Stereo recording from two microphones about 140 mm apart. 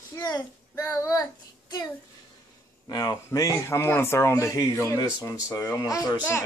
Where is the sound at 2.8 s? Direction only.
25° left (ahead or behind).